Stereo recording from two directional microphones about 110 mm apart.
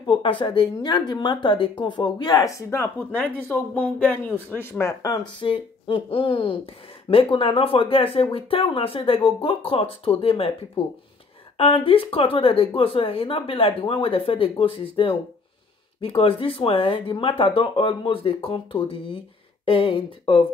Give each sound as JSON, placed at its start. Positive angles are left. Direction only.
{"t": 0.0, "sound": "speech", "side_deg": 50}
{"t": 5.4, "sound": "speech", "side_deg": 50}
{"t": 11.5, "sound": "speech", "side_deg": 55}